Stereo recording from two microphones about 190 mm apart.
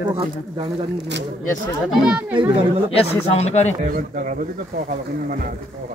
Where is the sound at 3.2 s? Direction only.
35° left (ahead or behind).